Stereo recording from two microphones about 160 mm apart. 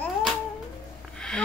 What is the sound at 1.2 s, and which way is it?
Snort, 5° left (ahead or behind).